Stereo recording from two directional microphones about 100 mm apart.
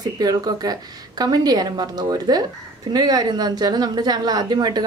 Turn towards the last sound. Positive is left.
turn(degrees=-45)  # may be behind; listen again after turning